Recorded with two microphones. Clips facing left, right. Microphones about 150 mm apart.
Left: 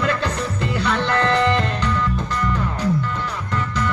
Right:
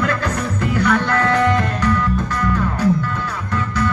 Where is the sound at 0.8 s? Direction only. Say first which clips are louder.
Right 3 dB; 20° left (ahead or behind).